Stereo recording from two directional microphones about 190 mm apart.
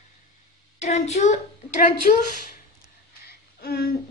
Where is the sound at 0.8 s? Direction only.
35° left (ahead or behind).